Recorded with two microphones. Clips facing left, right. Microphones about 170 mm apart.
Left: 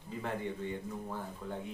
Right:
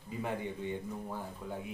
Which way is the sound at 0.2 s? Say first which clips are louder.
Even; 15° right (ahead or behind).